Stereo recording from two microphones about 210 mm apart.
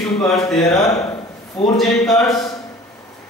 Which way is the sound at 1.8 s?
Centre (ahead or behind).